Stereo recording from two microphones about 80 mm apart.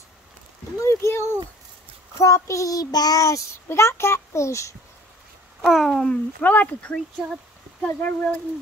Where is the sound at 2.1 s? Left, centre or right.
Left.